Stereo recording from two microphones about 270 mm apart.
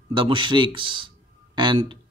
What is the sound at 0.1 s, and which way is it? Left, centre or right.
Speech, centre.